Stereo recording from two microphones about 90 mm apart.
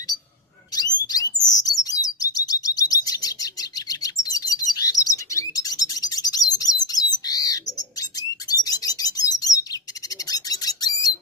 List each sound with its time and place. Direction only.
1.1 s chirp: 45° left (ahead or behind)